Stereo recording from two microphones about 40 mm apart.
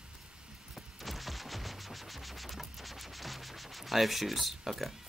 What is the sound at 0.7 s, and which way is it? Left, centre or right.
Music, centre.